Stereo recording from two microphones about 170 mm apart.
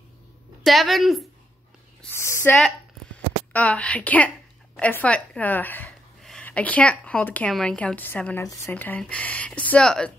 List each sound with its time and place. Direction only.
0.7 s a woman's voice: centre (ahead or behind)
2.1 s speech: 15° left (ahead or behind)
3.5 s a woman's voice: 10° left (ahead or behind)